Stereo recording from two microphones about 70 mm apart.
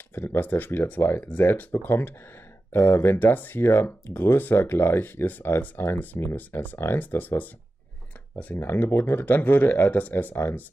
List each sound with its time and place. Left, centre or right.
0.1 s speech: left
8.5 s speech: left